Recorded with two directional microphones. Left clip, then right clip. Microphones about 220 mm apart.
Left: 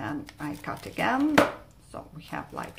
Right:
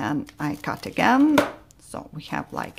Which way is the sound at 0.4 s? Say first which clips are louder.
Right 7 dB; 50° right (ahead or behind).